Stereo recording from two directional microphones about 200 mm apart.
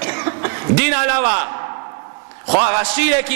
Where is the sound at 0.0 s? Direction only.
20° right (ahead or behind).